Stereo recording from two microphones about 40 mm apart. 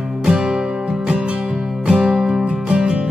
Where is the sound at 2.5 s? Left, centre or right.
Right.